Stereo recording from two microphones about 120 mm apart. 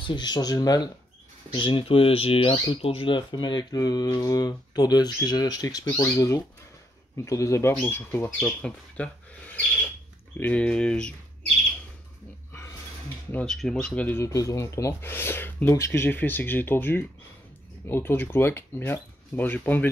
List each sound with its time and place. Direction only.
0.0 s speech: 40° left (ahead or behind)
1.5 s speech: 45° left (ahead or behind); by 11.1 s 10° left (ahead or behind)
13.3 s speech: 5° left (ahead or behind)
14.3 s speech: 25° left (ahead or behind)